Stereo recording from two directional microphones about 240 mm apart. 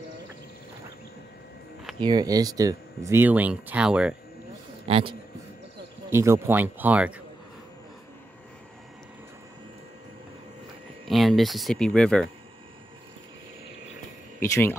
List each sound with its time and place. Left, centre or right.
2.0 s speech: centre
4.8 s speech: right
6.0 s speech: centre
11.1 s speech: centre
14.4 s speech: centre